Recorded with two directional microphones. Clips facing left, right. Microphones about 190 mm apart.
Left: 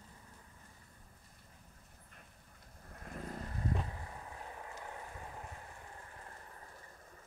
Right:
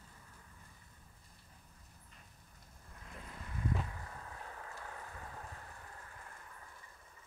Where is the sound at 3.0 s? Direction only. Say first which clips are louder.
Left 8 dB; 50° left (ahead or behind); by 5.4 s 20° left (ahead or behind).